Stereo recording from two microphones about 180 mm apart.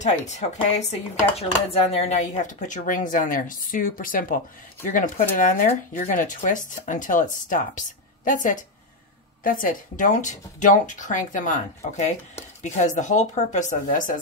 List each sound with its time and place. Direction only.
0.0 s a woman's voice: 40° left (ahead or behind)